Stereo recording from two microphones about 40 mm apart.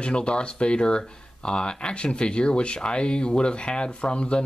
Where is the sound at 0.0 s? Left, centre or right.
Left.